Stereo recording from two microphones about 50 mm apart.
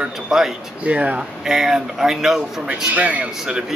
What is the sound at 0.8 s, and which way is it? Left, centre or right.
Speech, right.